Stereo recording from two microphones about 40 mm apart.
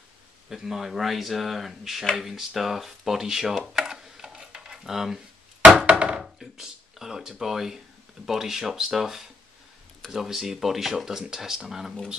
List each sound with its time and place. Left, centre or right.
0.5 s speech: centre
5.8 s chopping: right
6.4 s speech: centre